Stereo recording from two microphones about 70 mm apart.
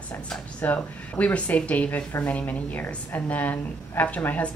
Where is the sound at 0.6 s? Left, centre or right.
Left.